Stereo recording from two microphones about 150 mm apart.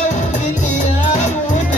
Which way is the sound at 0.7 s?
55° left (ahead or behind).